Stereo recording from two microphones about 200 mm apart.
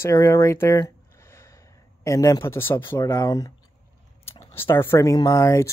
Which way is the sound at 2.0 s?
15° left (ahead or behind).